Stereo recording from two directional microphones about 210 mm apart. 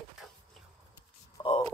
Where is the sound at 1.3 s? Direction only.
25° left (ahead or behind).